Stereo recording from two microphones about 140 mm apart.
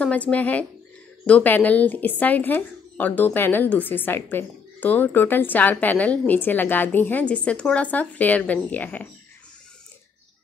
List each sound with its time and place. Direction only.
0.0 s speech: 10° left (ahead or behind)